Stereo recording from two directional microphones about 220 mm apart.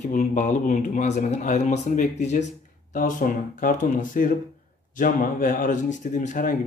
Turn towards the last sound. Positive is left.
turn(degrees=35)  # may be behind; listen again after turning